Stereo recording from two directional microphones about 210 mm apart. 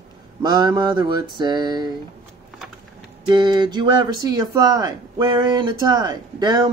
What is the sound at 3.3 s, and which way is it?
Speech, 20° right (ahead or behind).